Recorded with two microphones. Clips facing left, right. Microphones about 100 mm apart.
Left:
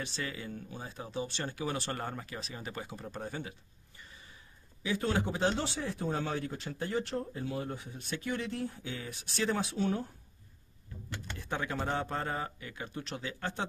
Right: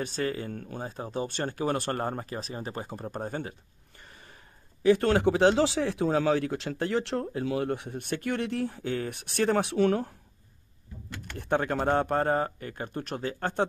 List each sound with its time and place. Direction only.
0.0 s speech: 45° right (ahead or behind)
4.0 s gasp: 55° right (ahead or behind)
4.8 s a man's voice: 70° right (ahead or behind)
11.3 s speech: 55° right (ahead or behind)